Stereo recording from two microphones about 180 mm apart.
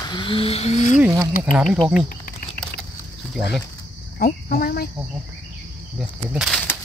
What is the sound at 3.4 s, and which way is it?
Speech, centre (ahead or behind).